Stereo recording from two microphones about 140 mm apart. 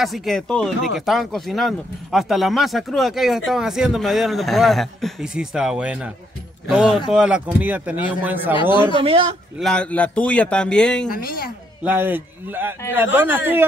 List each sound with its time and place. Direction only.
0.0 s speech: centre (ahead or behind)
8.9 s speech: 40° right (ahead or behind)
9.6 s a man's voice: 5° left (ahead or behind)
11.1 s a woman's voice: 90° left
11.8 s speech: 15° right (ahead or behind)